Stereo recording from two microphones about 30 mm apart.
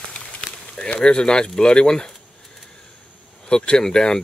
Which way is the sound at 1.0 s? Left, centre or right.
Left.